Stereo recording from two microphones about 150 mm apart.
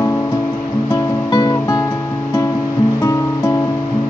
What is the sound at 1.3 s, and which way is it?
Music, 25° left (ahead or behind).